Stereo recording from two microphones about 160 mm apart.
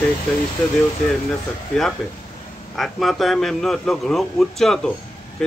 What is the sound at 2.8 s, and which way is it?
Speech, centre (ahead or behind).